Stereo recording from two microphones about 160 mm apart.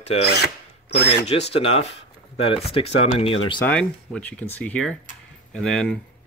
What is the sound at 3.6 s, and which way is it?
Speech, 5° left (ahead or behind).